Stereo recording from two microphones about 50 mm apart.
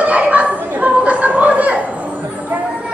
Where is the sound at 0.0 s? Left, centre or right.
Right.